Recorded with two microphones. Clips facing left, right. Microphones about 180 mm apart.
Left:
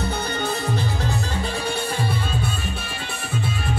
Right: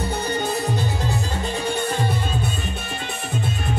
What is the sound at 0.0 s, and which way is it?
Music, 15° right (ahead or behind).